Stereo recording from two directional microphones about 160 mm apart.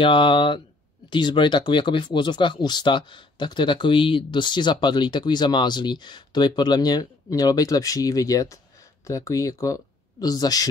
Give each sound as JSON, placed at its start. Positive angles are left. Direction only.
{"t": 0.0, "sound": "speech", "side_deg": 30}